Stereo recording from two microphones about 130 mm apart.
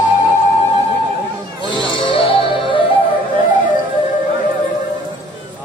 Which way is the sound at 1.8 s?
40° left (ahead or behind).